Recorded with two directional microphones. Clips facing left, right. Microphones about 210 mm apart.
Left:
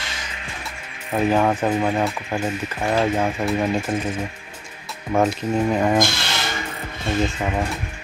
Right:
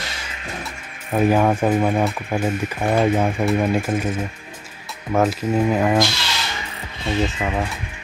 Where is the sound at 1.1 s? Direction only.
10° right (ahead or behind).